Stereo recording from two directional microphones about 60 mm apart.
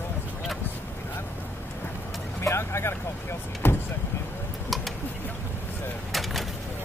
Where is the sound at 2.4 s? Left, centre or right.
Left.